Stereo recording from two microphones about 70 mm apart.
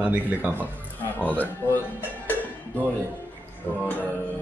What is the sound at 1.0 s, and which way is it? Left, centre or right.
Music, left.